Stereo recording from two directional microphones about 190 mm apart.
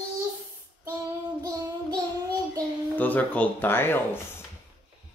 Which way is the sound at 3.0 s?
10° left (ahead or behind).